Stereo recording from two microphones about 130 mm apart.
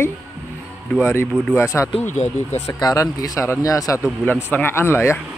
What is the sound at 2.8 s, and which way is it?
Speech, 30° left (ahead or behind).